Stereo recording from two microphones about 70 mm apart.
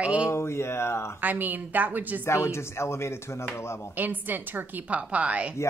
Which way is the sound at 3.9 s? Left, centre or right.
Right.